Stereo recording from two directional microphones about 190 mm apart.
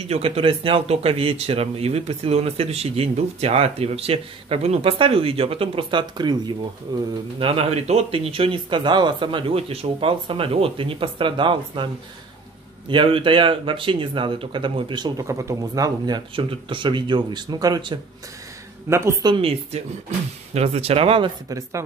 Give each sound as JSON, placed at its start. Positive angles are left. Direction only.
{"t": 0.1, "sound": "speech", "side_deg": -30}
{"t": 12.9, "sound": "a woman's voice", "side_deg": -25}
{"t": 19.3, "sound": "speech", "side_deg": -30}
{"t": 21.5, "sound": "a woman's voice", "side_deg": -15}